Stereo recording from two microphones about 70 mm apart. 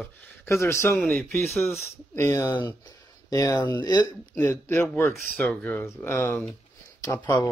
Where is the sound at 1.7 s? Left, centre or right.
Left.